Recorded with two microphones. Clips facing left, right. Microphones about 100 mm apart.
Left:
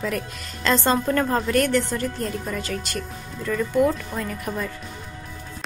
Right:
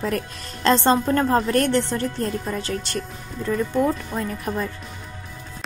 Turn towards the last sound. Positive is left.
turn(degrees=-30)  # may be behind; listen again after turning